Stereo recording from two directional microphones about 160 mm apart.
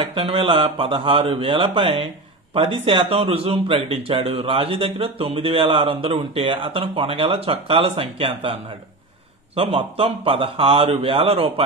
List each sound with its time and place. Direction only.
0.0 s speech: 35° right (ahead or behind)
9.6 s speech: 35° right (ahead or behind)